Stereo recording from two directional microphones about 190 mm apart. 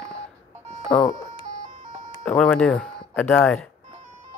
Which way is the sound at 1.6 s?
40° right (ahead or behind).